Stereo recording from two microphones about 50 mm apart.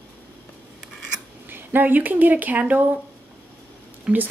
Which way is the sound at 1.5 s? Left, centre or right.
Right.